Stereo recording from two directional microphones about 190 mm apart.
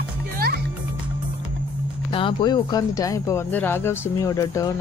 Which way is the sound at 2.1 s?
25° left (ahead or behind).